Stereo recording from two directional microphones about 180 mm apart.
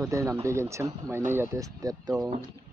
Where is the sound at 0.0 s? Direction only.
15° right (ahead or behind).